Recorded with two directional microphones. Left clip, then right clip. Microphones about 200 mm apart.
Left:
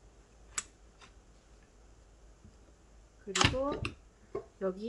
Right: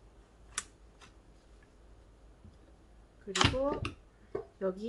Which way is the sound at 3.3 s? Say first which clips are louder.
Even; 5° left (ahead or behind).